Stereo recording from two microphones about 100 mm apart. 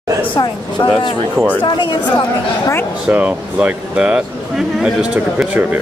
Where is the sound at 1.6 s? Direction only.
50° left (ahead or behind).